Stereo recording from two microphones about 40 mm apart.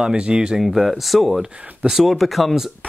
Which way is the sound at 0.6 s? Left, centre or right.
Centre.